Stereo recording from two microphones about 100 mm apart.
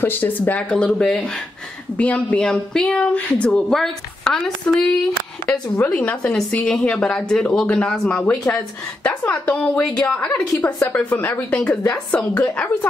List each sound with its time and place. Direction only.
0.0 s speech: 20° left (ahead or behind)
5.5 s speech: 15° left (ahead or behind)